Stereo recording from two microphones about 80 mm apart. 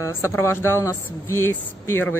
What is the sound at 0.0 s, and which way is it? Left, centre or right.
Speech, left.